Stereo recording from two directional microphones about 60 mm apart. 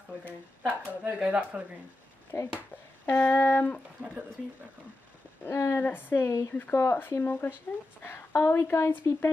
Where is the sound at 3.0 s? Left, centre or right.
Left.